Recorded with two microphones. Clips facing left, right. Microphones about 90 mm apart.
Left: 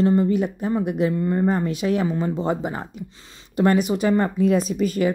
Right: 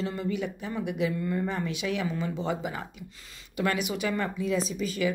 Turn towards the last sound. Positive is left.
turn(degrees=50)  # may be behind; listen again after turning